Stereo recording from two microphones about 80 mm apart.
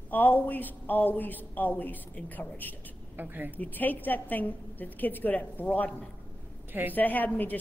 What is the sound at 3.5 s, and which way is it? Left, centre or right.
A woman's voice, left.